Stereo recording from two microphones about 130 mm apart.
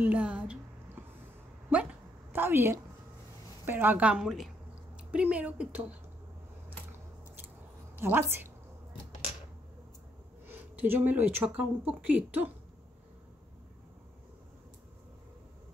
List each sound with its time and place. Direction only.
0.0 s a sound: 10° right (ahead or behind)
3.6 s speech: 15° right (ahead or behind)
8.0 s speech: 15° right (ahead or behind)
10.4 s speech: 15° right (ahead or behind)